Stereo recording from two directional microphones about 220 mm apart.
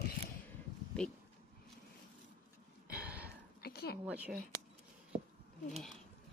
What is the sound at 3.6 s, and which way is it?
Speech, 45° left (ahead or behind).